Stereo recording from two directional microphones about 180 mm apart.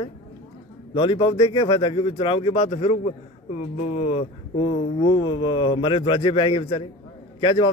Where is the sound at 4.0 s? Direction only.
35° left (ahead or behind).